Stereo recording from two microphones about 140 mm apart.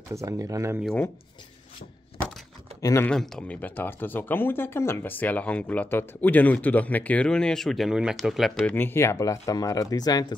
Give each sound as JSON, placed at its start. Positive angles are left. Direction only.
{"t": 0.1, "sound": "speech", "side_deg": -20}
{"t": 2.8, "sound": "speech", "side_deg": 20}
{"t": 3.1, "sound": "speech", "side_deg": 5}
{"t": 8.7, "sound": "speech", "side_deg": 15}